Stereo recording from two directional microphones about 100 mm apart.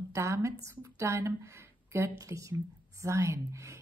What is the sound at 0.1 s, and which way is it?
A woman's voice, 30° right (ahead or behind).